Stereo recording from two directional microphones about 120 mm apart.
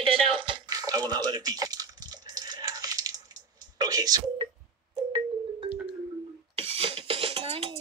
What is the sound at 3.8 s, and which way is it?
Telephone dialing, 35° right (ahead or behind).